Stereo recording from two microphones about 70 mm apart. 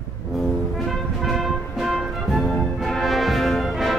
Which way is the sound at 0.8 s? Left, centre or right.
Centre.